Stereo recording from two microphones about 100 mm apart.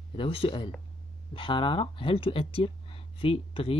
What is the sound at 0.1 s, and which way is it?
Speech, 65° left (ahead or behind).